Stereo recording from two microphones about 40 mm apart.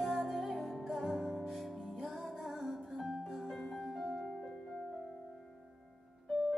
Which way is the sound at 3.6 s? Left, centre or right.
Centre.